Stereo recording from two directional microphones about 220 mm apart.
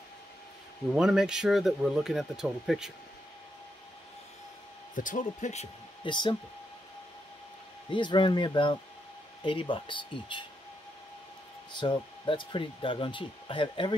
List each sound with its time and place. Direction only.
0.9 s speech: 5° right (ahead or behind)
4.9 s speech: 35° left (ahead or behind)
7.9 s speech: 20° left (ahead or behind)
11.7 s speech: 20° left (ahead or behind)